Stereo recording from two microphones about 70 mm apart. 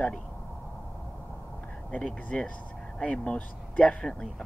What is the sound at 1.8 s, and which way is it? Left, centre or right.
Speech, centre.